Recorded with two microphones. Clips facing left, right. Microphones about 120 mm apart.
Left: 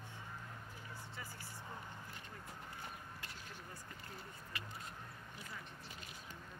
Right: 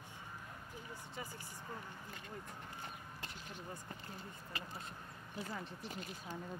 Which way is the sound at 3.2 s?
20° right (ahead or behind).